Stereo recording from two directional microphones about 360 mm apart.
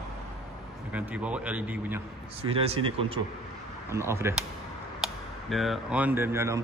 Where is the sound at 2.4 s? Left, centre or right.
Centre.